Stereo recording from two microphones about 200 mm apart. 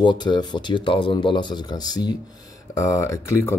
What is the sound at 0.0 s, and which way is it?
Speech, 25° left (ahead or behind).